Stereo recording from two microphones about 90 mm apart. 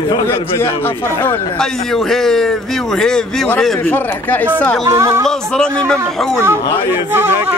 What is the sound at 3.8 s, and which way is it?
Speech, 20° left (ahead or behind).